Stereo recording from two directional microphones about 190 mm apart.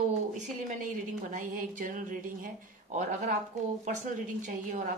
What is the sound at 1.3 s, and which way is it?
A woman's voice, 45° right (ahead or behind).